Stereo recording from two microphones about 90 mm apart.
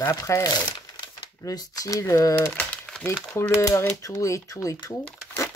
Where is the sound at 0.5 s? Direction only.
50° left (ahead or behind).